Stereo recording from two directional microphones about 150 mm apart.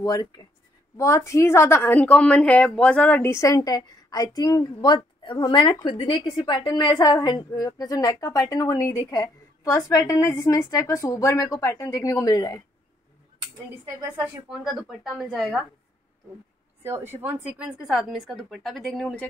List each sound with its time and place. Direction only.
0.0 s a woman's voice: 25° left (ahead or behind)
14.6 s a woman's voice: 5° right (ahead or behind)
16.8 s a woman's voice: 15° right (ahead or behind); by 19.2 s 5° left (ahead or behind)